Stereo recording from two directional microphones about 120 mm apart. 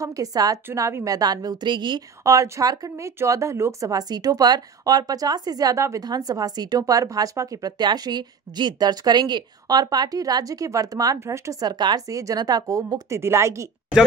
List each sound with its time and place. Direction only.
0.0 s speech: 30° right (ahead or behind)
2.2 s speech: 25° right (ahead or behind)
11.7 s a woman's voice: 35° right (ahead or behind)